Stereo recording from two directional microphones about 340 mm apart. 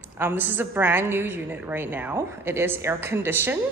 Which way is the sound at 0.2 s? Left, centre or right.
Centre.